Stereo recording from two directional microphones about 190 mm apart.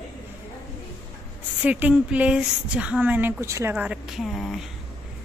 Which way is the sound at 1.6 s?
5° right (ahead or behind).